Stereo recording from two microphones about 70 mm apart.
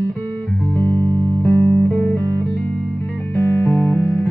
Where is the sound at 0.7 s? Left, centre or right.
Left.